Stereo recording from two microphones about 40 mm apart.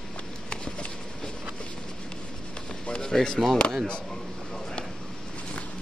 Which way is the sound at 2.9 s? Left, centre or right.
Left.